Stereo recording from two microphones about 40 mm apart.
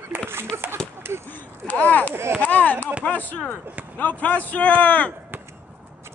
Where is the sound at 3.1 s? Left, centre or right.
Left.